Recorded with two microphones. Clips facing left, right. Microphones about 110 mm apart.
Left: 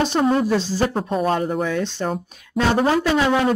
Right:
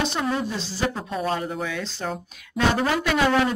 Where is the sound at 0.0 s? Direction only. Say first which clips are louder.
Left 7 dB; 40° left (ahead or behind).